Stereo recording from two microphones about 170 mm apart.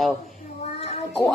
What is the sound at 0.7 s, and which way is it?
Child singing, 35° left (ahead or behind).